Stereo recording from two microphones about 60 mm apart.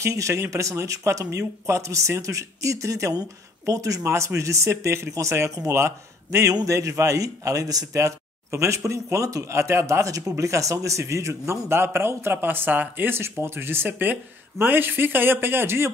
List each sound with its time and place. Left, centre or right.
0.0 s speech: right
4.0 s speech: right